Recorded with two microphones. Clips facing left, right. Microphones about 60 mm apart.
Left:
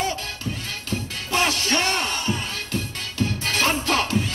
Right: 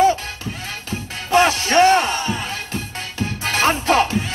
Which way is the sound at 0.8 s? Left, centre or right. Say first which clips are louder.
Right 2 dB; right.